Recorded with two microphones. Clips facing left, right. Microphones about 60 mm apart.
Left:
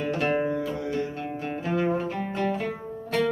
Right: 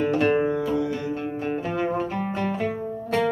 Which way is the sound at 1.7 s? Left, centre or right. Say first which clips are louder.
Left 3 dB; centre.